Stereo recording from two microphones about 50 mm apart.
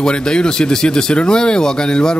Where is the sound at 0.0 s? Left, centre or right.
Centre.